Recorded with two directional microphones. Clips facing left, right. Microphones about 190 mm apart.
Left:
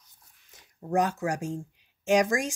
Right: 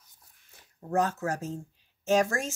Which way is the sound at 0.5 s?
15° left (ahead or behind).